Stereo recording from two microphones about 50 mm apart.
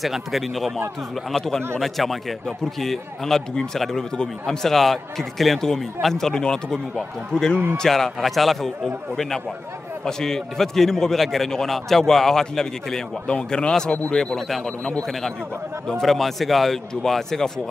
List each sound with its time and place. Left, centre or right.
0.0 s a man's voice: centre
1.3 s a man's voice: centre
15.9 s a man's voice: centre